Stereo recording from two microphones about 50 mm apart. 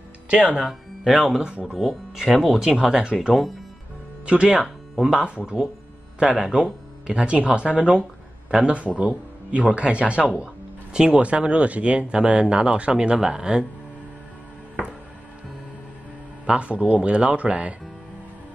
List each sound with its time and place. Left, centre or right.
0.3 s speech: right
0.6 s speech: centre
4.3 s speech: centre
4.6 s speech: centre
6.3 s speech: centre
16.4 s speech: right